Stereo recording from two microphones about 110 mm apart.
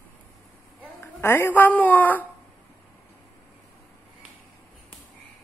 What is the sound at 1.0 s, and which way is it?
A woman's voice, 20° left (ahead or behind).